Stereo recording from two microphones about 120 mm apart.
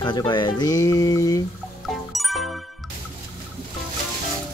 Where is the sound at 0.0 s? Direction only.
40° left (ahead or behind).